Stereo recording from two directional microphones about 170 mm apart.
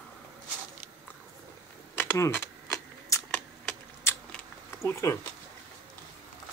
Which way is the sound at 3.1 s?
15° left (ahead or behind).